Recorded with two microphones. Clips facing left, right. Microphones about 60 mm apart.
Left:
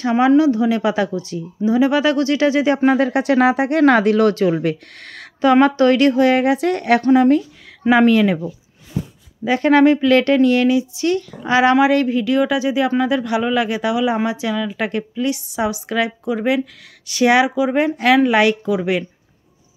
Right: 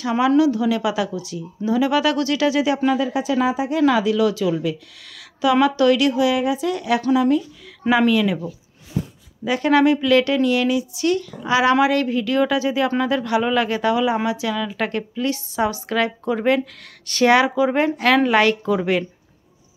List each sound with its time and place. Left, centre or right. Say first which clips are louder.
0.0 s speech: left 3 dB; left
3.1 s speech: left 5 dB; left
6.4 s a woman's voice: left 4 dB; left
7.9 s speech: left 4 dB; left
9.5 s speech: left 3 dB; left
11.7 s a woman's voice: left 3 dB; left
14.2 s speech: left 2 dB; left
14.8 s a woman's voice: left 2 dB; centre